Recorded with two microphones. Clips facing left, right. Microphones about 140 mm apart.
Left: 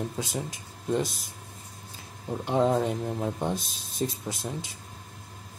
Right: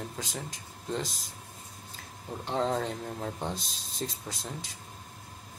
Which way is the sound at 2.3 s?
10° left (ahead or behind).